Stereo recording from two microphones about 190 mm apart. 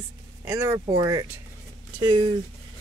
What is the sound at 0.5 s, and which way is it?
Speech, 15° right (ahead or behind).